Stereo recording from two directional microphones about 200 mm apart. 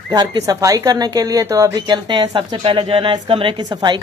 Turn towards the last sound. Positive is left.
turn(degrees=-20)  # may be behind; listen again after turning